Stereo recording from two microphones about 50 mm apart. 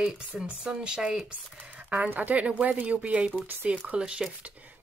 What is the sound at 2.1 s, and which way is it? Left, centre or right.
Speech, right.